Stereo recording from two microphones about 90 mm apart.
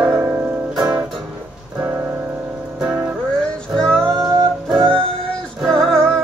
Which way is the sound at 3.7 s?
5° left (ahead or behind).